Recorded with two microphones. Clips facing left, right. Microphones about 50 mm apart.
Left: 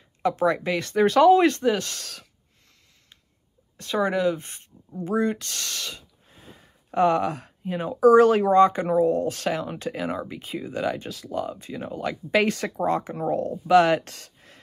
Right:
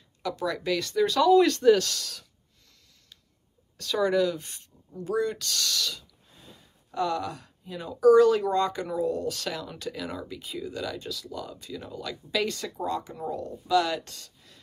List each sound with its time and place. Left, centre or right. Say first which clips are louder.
0.2 s speech: left 8 dB; left
2.0 s speech: right 1 dB; left
3.7 s speech: left 1 dB; left